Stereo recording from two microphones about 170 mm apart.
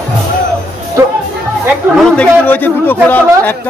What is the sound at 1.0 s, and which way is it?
Music, 15° right (ahead or behind).